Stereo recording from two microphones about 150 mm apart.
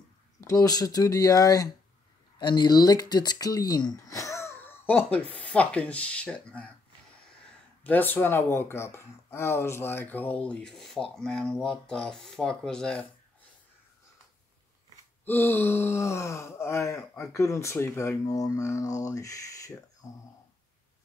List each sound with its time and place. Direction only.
0.4 s speech: 25° left (ahead or behind)
7.8 s speech: 10° left (ahead or behind)
15.2 s speech: 15° left (ahead or behind)